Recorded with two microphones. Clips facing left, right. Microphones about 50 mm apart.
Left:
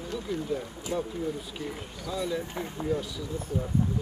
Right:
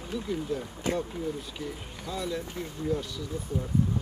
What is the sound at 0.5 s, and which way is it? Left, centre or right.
Speech, centre.